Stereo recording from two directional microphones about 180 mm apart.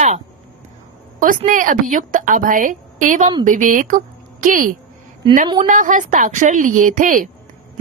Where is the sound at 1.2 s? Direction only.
50° right (ahead or behind).